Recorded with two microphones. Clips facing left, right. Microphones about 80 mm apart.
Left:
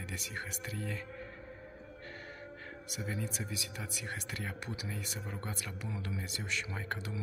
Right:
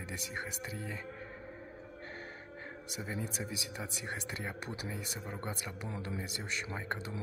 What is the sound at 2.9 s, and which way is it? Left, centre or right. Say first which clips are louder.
Speech: even; right.